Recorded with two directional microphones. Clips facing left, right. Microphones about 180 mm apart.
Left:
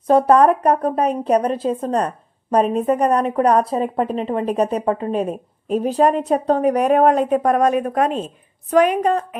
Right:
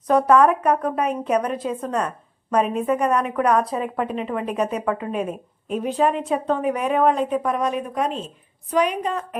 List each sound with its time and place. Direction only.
0.0 s a woman's voice: 30° left (ahead or behind); by 9.2 s 50° left (ahead or behind)